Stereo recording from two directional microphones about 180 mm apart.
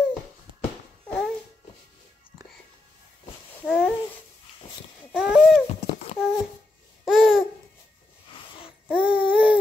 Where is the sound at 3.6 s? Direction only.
Centre (ahead or behind).